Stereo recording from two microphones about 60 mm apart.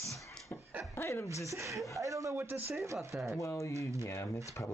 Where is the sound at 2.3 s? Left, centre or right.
Right.